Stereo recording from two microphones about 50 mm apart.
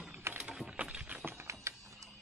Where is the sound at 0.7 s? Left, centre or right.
Right.